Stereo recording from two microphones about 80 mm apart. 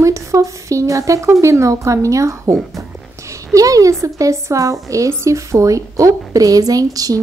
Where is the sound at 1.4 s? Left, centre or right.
Right.